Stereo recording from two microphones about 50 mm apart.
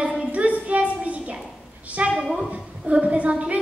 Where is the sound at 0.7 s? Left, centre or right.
Right.